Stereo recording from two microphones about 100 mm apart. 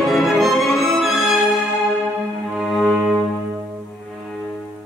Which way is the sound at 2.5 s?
Centre (ahead or behind).